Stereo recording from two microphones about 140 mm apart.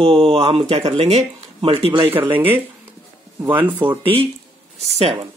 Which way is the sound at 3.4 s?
15° right (ahead or behind).